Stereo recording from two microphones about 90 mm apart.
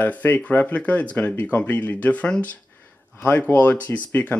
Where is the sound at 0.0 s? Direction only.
15° left (ahead or behind).